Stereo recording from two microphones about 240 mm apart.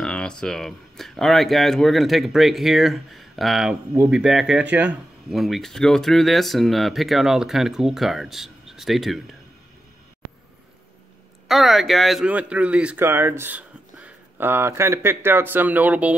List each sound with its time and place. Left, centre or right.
0.0 s speech: centre
11.4 s speech: centre